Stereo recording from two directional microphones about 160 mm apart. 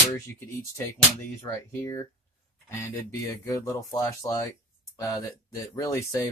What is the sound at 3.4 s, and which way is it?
Speech, 20° left (ahead or behind).